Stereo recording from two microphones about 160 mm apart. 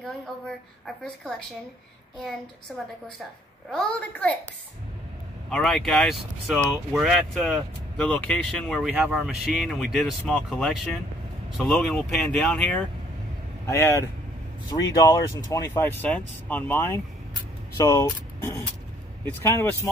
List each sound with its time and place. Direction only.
0.0 s speech: centre (ahead or behind)
3.7 s speech: 5° left (ahead or behind)
5.5 s speech: 5° left (ahead or behind)
13.7 s speech: 20° left (ahead or behind)